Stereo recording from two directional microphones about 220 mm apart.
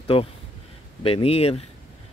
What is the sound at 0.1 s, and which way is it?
Speech, 25° left (ahead or behind).